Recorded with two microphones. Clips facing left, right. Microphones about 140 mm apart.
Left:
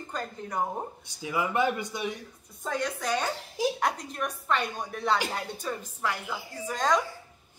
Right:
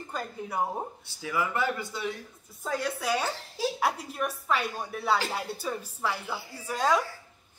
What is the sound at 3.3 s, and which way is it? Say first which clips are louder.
Speech: left 2 dB; 15° left (ahead or behind).